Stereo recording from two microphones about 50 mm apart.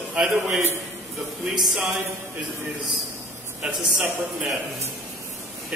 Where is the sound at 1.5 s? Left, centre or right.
Centre.